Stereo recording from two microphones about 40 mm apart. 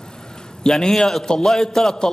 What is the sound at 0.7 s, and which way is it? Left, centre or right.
A man's voice, centre.